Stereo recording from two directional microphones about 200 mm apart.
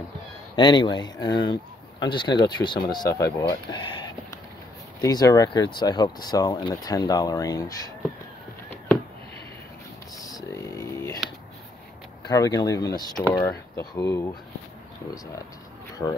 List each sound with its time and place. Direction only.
0.6 s speech: 20° left (ahead or behind)
10.1 s a sound: 15° left (ahead or behind)
12.3 s speech: 20° left (ahead or behind)